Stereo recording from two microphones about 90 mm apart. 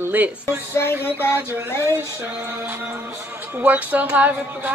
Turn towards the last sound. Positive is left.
turn(degrees=-20)  # may be behind; listen again after turning